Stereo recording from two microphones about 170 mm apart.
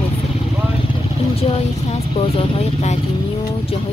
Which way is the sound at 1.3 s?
35° left (ahead or behind).